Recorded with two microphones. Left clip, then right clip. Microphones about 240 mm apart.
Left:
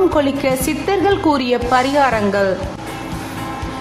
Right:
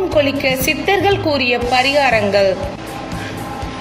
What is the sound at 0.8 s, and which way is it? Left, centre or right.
Speech, centre.